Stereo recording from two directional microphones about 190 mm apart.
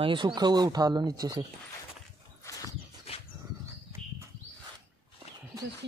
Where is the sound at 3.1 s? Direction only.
30° left (ahead or behind).